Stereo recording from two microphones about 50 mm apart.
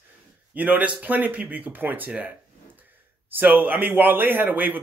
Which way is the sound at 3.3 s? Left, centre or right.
Right.